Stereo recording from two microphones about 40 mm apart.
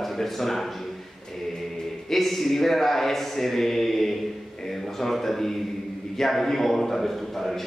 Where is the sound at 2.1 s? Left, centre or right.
Centre.